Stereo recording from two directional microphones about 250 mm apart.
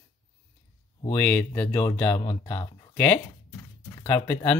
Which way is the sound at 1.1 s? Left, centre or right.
Centre.